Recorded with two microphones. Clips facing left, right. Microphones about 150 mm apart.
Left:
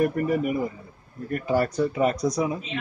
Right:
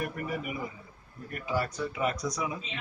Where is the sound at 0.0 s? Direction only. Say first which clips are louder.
Left 11 dB; 45° left (ahead or behind).